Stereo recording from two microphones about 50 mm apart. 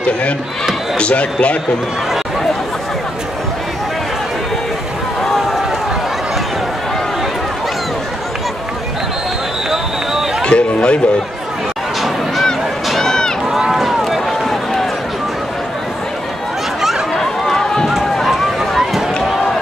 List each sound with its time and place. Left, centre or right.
0.9 s speech: left
10.4 s music: left
12.8 s run: centre
13.5 s run: centre
16.8 s run: centre